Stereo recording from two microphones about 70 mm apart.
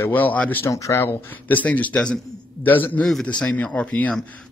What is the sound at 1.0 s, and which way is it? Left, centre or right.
Speech, left.